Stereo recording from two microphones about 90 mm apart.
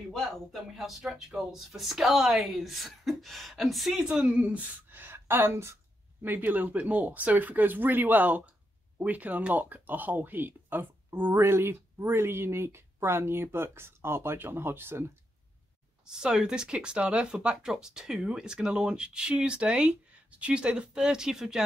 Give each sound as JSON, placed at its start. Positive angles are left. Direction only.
{"t": 0.1, "sound": "a woman's voice", "side_deg": 5}
{"t": 16.1, "sound": "speech", "side_deg": -10}